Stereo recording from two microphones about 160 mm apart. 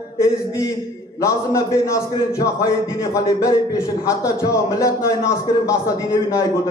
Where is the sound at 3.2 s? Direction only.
20° left (ahead or behind).